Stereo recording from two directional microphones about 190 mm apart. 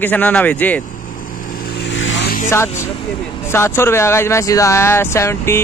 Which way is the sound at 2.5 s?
15° left (ahead or behind).